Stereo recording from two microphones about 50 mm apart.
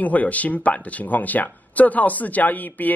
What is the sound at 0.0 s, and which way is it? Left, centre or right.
Speech, left.